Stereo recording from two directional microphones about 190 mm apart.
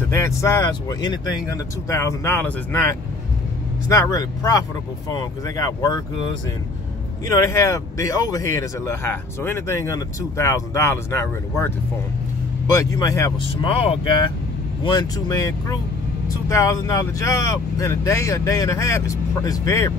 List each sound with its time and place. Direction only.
0.1 s speech: 15° left (ahead or behind)
3.9 s speech: 20° left (ahead or behind)
7.2 s speech: 15° left (ahead or behind)
13.4 s speech: 30° left (ahead or behind)